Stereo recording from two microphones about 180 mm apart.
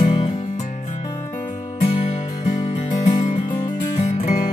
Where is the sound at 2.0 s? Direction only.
35° left (ahead or behind).